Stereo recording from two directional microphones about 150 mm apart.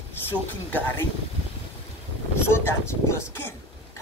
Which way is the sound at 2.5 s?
20° left (ahead or behind).